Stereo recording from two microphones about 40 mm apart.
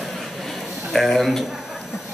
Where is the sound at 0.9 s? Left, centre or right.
Centre.